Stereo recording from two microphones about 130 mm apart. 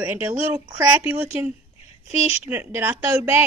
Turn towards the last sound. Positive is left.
turn(degrees=-20)  # may be behind; listen again after turning